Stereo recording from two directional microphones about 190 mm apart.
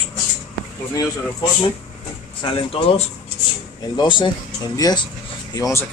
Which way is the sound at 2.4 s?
30° left (ahead or behind).